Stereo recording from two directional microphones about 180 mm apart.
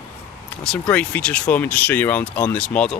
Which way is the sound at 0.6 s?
5° left (ahead or behind).